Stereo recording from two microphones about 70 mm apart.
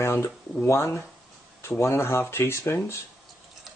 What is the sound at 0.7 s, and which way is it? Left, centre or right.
Speech, left.